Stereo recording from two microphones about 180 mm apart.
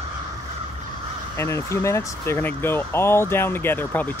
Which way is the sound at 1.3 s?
15° left (ahead or behind).